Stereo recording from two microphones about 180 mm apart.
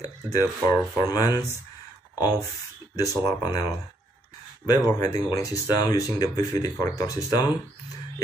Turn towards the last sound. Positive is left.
turn(degrees=20)  # may be behind; listen again after turning